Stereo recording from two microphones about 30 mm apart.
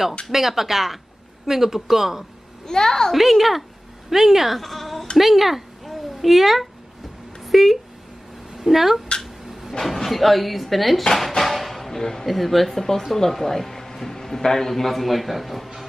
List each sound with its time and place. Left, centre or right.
0.3 s speech: centre
2.6 s a child's voice: centre
3.1 s speech: centre
5.1 s a sound: centre
7.4 s speech: centre
9.2 s a sound: centre
9.8 s speech: centre
11.1 s music: centre
12.3 s speech: centre